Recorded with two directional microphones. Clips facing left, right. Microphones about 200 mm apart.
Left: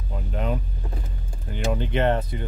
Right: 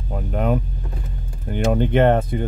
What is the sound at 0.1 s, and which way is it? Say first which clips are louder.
Speech: right 7 dB; 55° right (ahead or behind).